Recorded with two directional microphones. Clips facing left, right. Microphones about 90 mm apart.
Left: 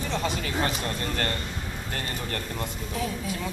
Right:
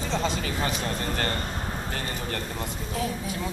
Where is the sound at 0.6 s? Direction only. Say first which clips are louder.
Left 2 dB; 5° right (ahead or behind).